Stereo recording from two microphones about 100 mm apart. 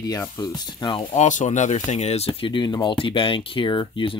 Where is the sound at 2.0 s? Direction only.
90° left.